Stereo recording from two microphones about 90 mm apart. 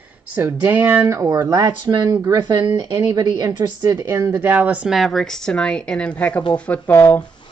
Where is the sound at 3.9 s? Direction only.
30° right (ahead or behind); by 4.9 s 15° right (ahead or behind).